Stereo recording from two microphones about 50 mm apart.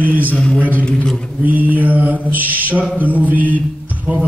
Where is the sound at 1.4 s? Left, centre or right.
Right.